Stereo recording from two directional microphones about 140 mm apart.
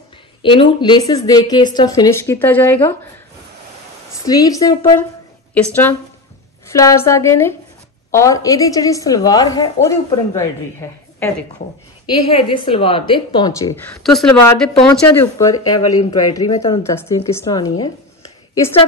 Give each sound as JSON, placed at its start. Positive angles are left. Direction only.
{"t": 0.4, "sound": "a woman's voice", "side_deg": 35}
{"t": 4.3, "sound": "a woman's voice", "side_deg": 25}
{"t": 5.5, "sound": "a woman's voice", "side_deg": 10}
{"t": 6.7, "sound": "a woman's voice", "side_deg": 20}
{"t": 12.3, "sound": "a woman's voice", "side_deg": 40}
{"t": 13.8, "sound": "speech", "side_deg": 5}
{"t": 14.9, "sound": "a woman's voice", "side_deg": 20}